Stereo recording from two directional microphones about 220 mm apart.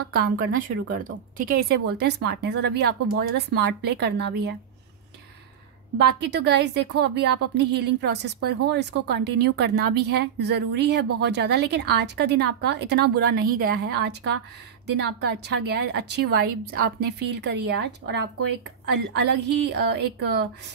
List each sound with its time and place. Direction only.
0.1 s speech: 40° right (ahead or behind)
5.9 s speech: 50° right (ahead or behind)